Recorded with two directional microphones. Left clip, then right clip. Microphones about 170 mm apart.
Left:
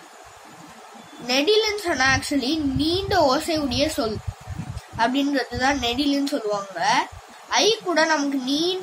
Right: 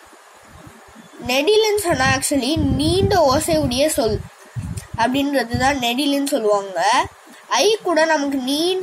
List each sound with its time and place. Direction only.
1.2 s a woman's voice: 20° right (ahead or behind)